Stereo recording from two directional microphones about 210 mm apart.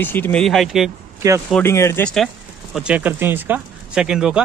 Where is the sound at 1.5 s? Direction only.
10° left (ahead or behind).